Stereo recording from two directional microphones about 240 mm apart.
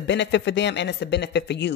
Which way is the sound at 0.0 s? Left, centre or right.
Left.